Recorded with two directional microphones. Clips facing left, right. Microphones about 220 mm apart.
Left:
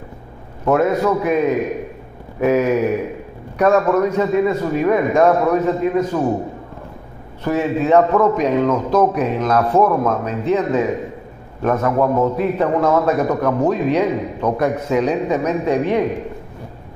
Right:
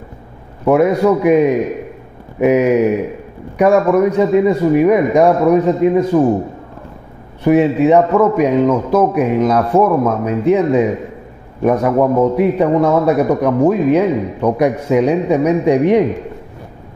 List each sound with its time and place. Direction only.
0.7 s a man's voice: 15° right (ahead or behind)
7.4 s a man's voice: 15° right (ahead or behind)